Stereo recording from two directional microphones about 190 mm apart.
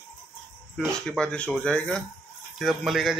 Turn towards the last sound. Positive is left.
turn(degrees=0)  # may be behind; listen again after turning